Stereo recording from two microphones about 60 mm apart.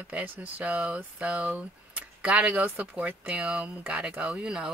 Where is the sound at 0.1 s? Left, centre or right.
Right.